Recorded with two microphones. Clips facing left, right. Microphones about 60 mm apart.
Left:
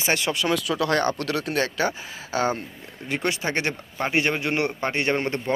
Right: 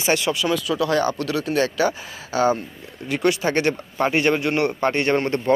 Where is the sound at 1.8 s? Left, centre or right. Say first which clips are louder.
Right 4 dB; left.